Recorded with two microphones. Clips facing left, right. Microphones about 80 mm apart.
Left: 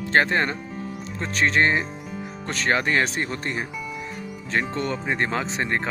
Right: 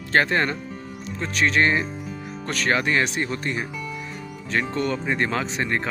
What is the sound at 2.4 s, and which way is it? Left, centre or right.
Speech, left.